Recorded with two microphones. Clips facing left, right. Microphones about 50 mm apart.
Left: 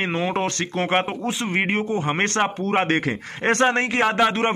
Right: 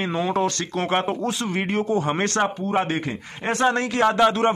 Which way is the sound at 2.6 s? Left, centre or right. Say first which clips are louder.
Left 2 dB; left.